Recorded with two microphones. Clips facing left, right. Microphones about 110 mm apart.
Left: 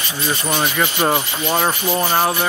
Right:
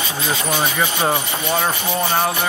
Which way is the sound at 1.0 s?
5° left (ahead or behind).